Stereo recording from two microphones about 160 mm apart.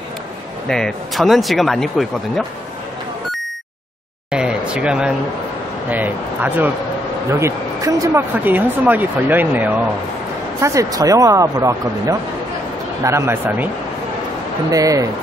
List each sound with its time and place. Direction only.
0.7 s speech: 5° left (ahead or behind)
4.3 s a sound: 5° right (ahead or behind)
5.9 s speech: 10° right (ahead or behind)
8.5 s speech: 10° right (ahead or behind)
14.7 s speech: 20° right (ahead or behind)